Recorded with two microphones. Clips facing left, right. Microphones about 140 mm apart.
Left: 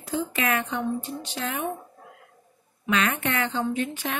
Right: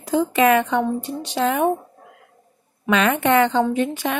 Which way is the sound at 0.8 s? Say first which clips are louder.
Right 5 dB; 80° right.